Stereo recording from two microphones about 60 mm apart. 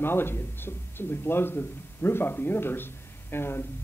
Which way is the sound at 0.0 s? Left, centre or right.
Left.